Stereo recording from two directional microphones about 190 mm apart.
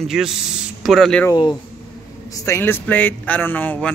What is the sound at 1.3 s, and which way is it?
A man's voice, 25° left (ahead or behind).